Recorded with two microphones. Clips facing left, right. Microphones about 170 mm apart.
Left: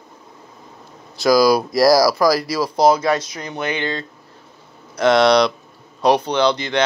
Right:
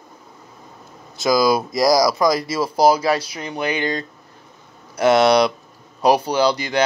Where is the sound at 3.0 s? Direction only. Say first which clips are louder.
Left 1 dB; 30° right (ahead or behind).